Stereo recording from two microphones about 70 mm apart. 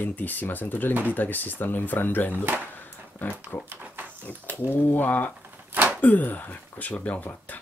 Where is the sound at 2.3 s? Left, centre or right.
Right.